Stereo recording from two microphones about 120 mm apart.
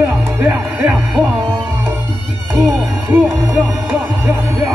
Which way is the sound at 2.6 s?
5° left (ahead or behind).